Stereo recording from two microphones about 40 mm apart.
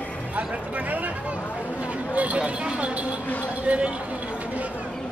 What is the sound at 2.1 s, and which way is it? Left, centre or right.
Speech, right.